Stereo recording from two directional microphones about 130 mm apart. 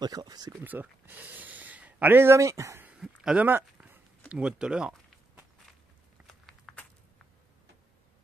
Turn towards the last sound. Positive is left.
turn(degrees=0)  # may be behind; listen again after turning